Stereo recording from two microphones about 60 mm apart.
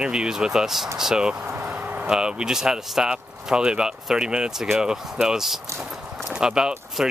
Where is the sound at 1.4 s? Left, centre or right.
Right.